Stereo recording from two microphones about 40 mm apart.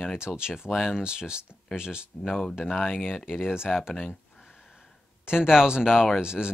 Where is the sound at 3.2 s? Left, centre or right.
Centre.